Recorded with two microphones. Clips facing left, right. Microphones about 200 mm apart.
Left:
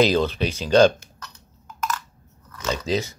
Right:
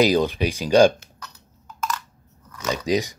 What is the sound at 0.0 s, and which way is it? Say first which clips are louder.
Speech: right 1 dB; 15° right (ahead or behind).